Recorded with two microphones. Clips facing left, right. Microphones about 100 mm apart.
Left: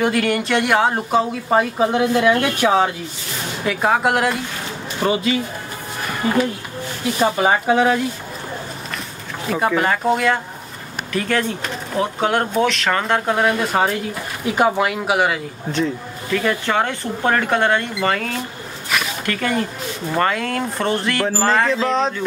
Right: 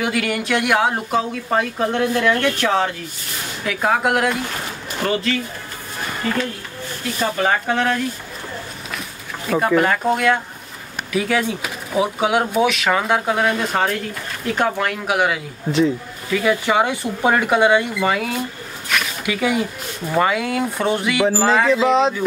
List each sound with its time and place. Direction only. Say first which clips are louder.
0.0 s speech: left 3 dB; centre (ahead or behind)
3.6 s speech: left 1 dB; centre (ahead or behind)
5.0 s speech: left 2 dB; 15° left (ahead or behind)
9.5 s speech: right 2 dB; centre (ahead or behind)